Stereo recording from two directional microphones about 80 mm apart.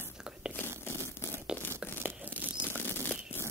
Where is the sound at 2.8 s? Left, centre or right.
Left.